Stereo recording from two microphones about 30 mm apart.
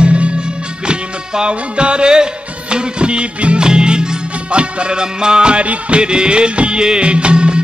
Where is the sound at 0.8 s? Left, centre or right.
Right.